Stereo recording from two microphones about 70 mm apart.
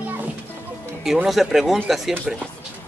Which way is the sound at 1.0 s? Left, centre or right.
Centre.